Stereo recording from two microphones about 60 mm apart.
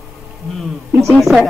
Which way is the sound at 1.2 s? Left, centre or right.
Centre.